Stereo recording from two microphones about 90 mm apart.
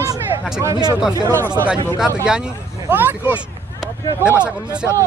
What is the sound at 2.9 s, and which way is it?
Speech, 20° right (ahead or behind).